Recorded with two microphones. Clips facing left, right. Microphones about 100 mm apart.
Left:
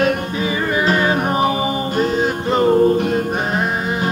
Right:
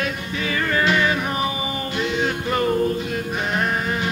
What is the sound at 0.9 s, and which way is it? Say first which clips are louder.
Music: left 4 dB; 40° left (ahead or behind).